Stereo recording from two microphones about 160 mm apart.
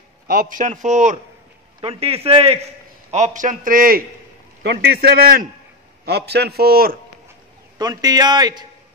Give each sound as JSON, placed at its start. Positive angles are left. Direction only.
{"t": 0.3, "sound": "a man's voice", "side_deg": -60}
{"t": 1.8, "sound": "a man's voice", "side_deg": -40}
{"t": 3.1, "sound": "a man's voice", "side_deg": -50}
{"t": 4.6, "sound": "a man's voice", "side_deg": -85}
{"t": 6.0, "sound": "a man's voice", "side_deg": -90}
{"t": 7.7, "sound": "a man's voice", "side_deg": -25}